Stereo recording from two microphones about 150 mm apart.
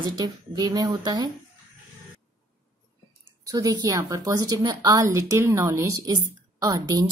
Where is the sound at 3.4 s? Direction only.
25° right (ahead or behind).